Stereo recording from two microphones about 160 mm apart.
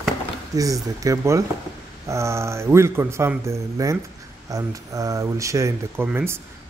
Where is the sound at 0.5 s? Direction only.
20° right (ahead or behind).